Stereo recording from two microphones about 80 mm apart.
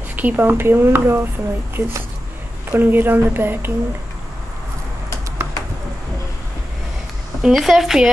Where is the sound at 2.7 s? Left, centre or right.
Right.